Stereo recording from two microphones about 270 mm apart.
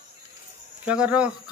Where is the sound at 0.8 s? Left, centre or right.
Centre.